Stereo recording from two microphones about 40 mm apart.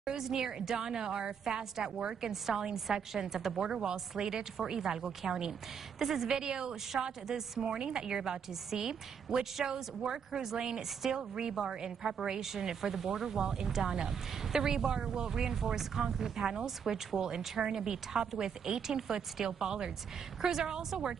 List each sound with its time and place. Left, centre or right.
0.2 s a woman's voice: centre
2.0 s a woman's voice: right
2.4 s a woman's voice: centre